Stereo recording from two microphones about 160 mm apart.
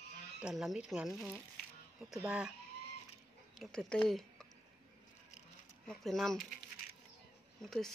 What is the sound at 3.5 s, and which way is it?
Speech, 5° left (ahead or behind).